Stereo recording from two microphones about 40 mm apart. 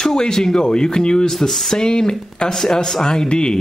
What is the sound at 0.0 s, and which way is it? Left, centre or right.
Speech, centre.